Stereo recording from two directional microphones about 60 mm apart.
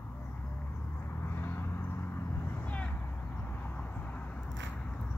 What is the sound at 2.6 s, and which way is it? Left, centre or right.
Vehicle, left.